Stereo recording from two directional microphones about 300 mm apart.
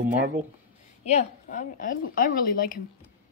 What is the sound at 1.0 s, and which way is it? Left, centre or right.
A woman's voice, left.